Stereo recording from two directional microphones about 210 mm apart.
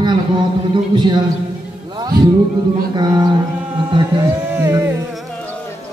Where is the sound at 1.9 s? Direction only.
20° right (ahead or behind).